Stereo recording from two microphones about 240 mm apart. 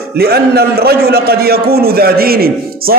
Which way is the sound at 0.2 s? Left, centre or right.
Right.